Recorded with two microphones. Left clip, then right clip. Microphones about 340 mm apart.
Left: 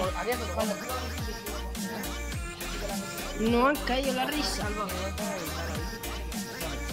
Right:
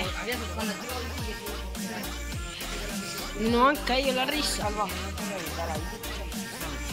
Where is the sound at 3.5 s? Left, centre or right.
Centre.